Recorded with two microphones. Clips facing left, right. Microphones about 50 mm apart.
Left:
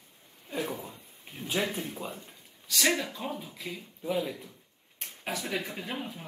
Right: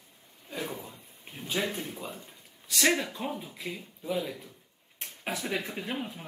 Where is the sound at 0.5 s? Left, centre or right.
Centre.